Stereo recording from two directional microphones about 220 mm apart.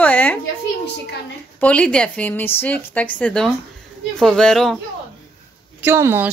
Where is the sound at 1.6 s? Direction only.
5° left (ahead or behind).